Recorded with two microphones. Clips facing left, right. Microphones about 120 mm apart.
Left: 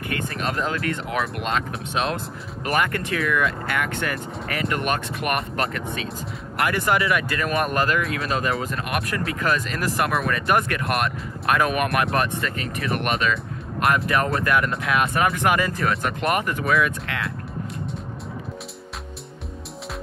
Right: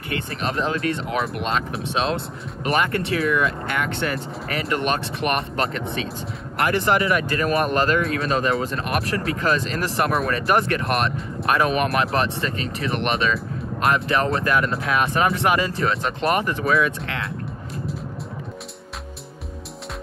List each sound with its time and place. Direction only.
0.1 s speech: 30° right (ahead or behind)
6.6 s speech: 35° right (ahead or behind)